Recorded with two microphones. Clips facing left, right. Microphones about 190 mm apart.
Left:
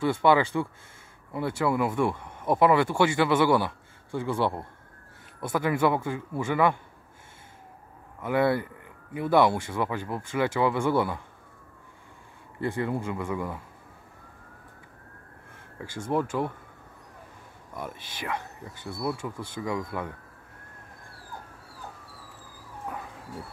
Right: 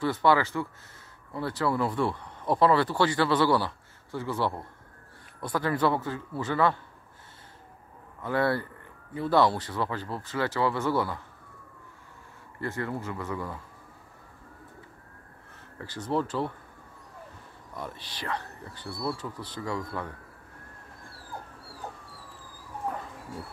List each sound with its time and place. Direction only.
0.2 s speech: 20° left (ahead or behind)
8.2 s speech: 15° left (ahead or behind)
12.5 s speech: 15° left (ahead or behind)
16.1 s speech: 15° left (ahead or behind)
17.7 s speech: 15° left (ahead or behind)